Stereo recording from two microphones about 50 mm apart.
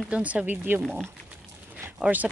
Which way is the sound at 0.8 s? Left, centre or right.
Centre.